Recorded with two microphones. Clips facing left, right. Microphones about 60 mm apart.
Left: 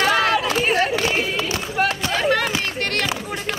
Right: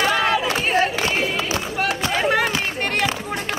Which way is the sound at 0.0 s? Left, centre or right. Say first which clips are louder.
Left 1 dB; centre.